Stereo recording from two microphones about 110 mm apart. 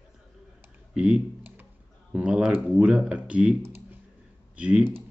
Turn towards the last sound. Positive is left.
turn(degrees=-10)  # may be behind; listen again after turning